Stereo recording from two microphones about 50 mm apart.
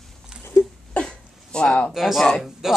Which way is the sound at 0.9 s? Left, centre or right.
Centre.